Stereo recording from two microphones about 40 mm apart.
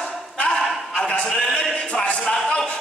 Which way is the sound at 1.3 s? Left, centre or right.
Centre.